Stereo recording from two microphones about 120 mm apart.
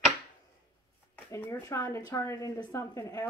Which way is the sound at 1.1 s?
20° left (ahead or behind).